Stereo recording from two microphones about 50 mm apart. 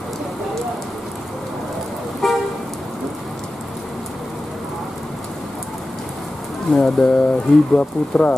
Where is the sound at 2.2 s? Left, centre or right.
Centre.